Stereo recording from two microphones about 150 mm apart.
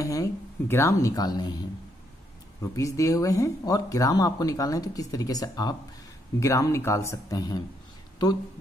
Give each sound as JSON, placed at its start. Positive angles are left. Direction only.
{"t": 0.0, "sound": "speech", "side_deg": 20}
{"t": 2.6, "sound": "speech", "side_deg": 20}